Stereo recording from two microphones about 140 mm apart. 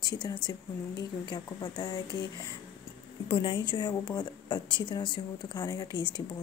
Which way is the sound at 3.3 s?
35° left (ahead or behind).